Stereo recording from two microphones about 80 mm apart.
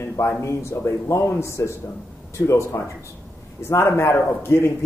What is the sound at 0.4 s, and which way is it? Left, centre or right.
Speech, left.